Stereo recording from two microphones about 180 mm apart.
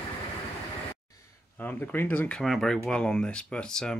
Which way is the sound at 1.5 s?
10° left (ahead or behind).